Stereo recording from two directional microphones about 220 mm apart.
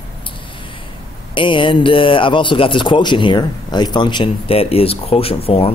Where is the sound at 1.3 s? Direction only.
20° left (ahead or behind).